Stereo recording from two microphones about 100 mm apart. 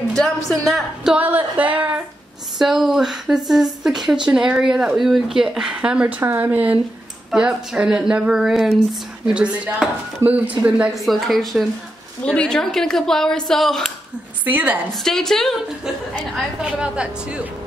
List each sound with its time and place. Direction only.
0.1 s speech: 5° left (ahead or behind)
1.1 s speech: 15° right (ahead or behind)
2.6 s speech: 5° right (ahead or behind)
11.0 s speech: centre (ahead or behind)
14.4 s a woman's voice: 15° right (ahead or behind)
15.0 s speech: 5° left (ahead or behind)